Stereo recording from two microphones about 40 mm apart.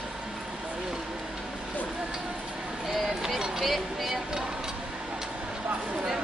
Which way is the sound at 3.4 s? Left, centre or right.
Centre.